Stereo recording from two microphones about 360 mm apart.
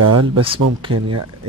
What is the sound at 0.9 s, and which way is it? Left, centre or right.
Speech, right.